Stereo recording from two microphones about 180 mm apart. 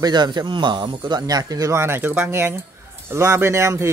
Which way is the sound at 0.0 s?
25° right (ahead or behind).